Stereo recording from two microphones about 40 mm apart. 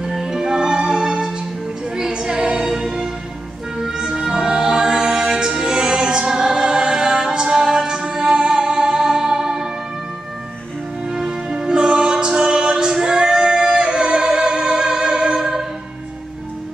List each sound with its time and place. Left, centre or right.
0.0 s music: centre
11.1 s music: centre